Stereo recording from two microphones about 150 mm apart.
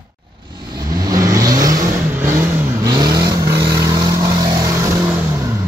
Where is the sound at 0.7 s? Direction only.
25° right (ahead or behind).